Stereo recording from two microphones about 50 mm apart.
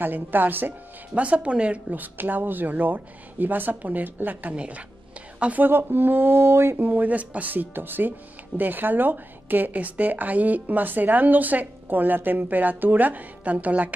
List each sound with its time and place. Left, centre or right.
0.0 s speech: right
1.1 s speech: right
2.0 s speech: right
4.6 s speech: right
5.6 s speech: right
6.8 s speech: right